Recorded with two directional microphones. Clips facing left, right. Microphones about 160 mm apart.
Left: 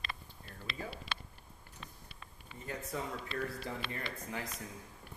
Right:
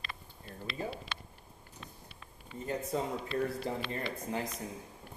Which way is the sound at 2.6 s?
25° right (ahead or behind).